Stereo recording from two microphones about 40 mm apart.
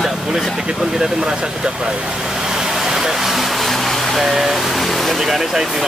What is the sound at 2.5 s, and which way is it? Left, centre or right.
Vehicle, centre.